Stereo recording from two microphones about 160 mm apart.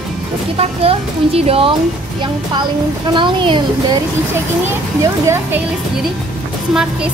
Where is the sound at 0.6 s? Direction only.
40° right (ahead or behind).